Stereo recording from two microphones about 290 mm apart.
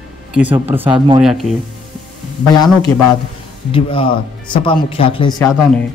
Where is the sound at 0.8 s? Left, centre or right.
Centre.